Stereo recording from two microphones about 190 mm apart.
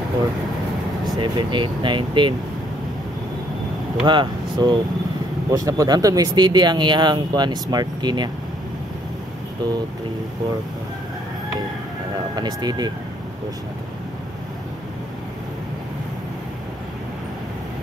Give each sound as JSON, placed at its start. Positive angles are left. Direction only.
{"t": 1.1, "sound": "speech", "side_deg": -25}
{"t": 4.0, "sound": "speech", "side_deg": -25}
{"t": 12.4, "sound": "speech", "side_deg": -20}